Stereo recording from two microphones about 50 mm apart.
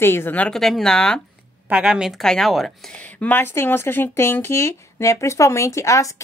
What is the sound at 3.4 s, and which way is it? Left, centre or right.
Speech, left.